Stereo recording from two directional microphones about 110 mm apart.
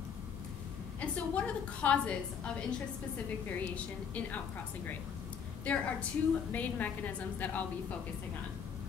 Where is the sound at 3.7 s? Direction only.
15° left (ahead or behind).